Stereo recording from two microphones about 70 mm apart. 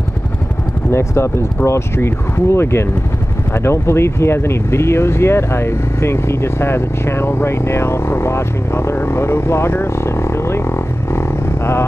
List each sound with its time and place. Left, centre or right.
0.9 s speech: left